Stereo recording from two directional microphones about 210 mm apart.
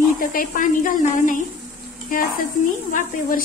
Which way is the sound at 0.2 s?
40° left (ahead or behind).